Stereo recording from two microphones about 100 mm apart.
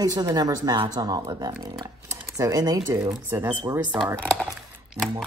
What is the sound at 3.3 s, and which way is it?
Speech, 25° right (ahead or behind).